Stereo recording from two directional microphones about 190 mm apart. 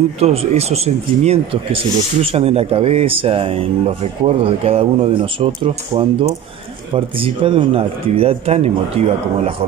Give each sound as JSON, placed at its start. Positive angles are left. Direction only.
{"t": 0.2, "sound": "speech", "side_deg": -30}